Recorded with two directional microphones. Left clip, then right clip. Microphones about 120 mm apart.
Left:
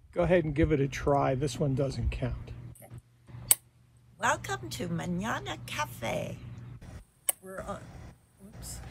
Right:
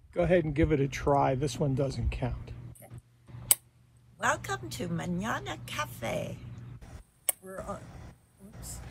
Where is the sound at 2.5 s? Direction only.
15° right (ahead or behind).